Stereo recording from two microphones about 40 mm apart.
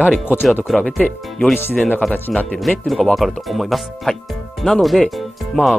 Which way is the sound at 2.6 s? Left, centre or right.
Centre.